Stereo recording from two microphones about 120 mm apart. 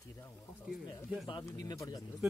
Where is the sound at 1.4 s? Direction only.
30° left (ahead or behind).